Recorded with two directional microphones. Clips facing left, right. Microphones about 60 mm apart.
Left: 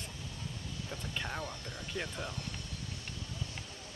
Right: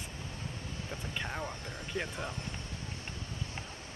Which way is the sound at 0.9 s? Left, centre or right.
Centre.